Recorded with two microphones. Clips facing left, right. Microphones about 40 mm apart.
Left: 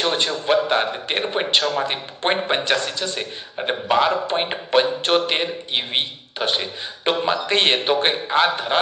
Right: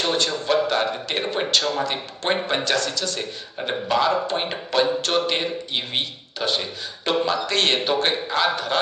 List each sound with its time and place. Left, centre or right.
0.0 s a man's voice: left